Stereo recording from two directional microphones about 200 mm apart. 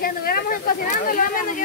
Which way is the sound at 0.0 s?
50° left (ahead or behind).